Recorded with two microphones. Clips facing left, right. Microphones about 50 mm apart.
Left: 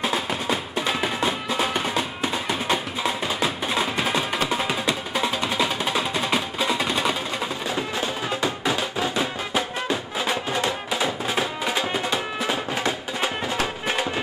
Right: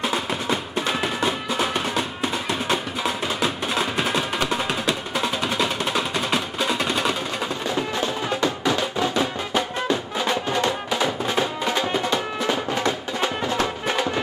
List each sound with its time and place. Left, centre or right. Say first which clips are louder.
0.0 s music: even; centre